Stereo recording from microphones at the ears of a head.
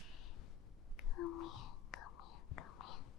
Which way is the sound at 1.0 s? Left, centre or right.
Left.